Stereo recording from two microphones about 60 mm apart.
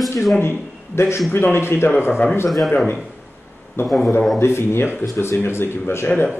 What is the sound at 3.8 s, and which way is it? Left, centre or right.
Speech, left.